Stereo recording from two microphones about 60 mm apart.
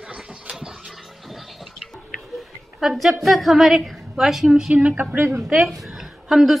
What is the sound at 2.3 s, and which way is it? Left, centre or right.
A woman's voice, centre.